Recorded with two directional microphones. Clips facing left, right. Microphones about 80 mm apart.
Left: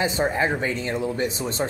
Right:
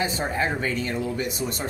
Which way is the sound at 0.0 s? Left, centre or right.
Left.